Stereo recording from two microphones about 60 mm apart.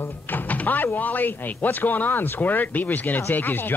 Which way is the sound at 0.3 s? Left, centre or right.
Left.